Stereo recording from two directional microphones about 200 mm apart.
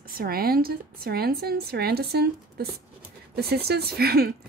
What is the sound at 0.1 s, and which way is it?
A woman's voice, 50° right (ahead or behind).